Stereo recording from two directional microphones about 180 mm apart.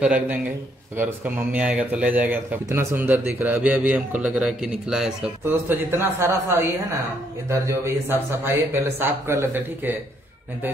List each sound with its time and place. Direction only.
0.0 s speech: 5° right (ahead or behind)